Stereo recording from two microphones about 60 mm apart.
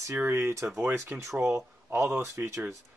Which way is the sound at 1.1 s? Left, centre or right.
Right.